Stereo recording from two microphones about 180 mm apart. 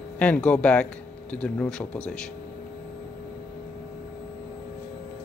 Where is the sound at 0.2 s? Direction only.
5° left (ahead or behind).